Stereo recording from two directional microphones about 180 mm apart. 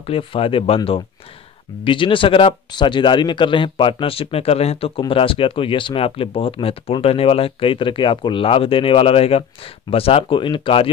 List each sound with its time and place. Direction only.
0.0 s speech: 30° left (ahead or behind)